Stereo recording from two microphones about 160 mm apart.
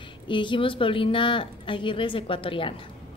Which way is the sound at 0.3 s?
30° left (ahead or behind).